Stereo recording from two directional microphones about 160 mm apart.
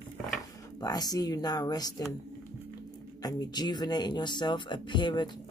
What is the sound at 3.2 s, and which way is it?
Speech, 25° left (ahead or behind).